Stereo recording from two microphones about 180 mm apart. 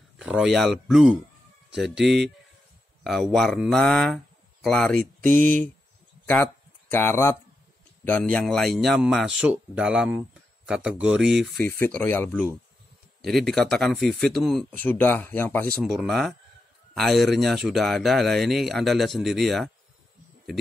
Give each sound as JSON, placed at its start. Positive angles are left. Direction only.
{"t": 0.2, "sound": "speech", "side_deg": -5}
{"t": 5.3, "sound": "speech", "side_deg": -45}
{"t": 6.9, "sound": "speech", "side_deg": 10}
{"t": 11.4, "sound": "speech", "side_deg": 10}
{"t": 15.8, "sound": "speech", "side_deg": 0}